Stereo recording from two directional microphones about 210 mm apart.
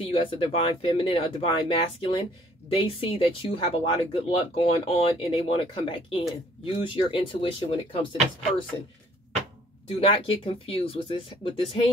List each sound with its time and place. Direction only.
0.0 s speech: 25° left (ahead or behind)
9.8 s speech: 25° left (ahead or behind)